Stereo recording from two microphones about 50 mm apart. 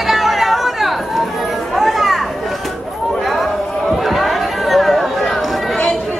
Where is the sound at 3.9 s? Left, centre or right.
Centre.